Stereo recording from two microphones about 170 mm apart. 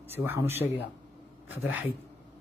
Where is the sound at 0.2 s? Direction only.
15° right (ahead or behind).